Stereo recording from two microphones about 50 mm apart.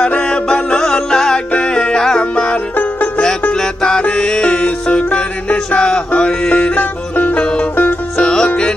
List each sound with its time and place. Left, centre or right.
0.2 s music: centre; by 3.1 s left
3.5 s music: centre; by 7.4 s left
8.2 s music: centre